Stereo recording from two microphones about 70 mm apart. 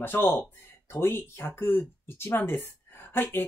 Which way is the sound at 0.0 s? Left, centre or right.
Left.